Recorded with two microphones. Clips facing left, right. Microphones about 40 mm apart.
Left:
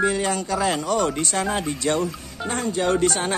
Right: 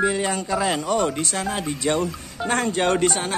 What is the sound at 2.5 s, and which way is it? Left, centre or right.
Speech, right.